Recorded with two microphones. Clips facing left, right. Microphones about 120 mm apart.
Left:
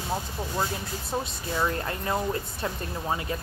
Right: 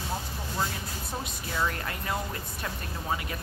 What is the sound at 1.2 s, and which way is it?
Speech, 30° left (ahead or behind).